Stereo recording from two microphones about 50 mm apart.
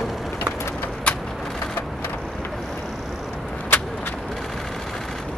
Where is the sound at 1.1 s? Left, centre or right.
Left.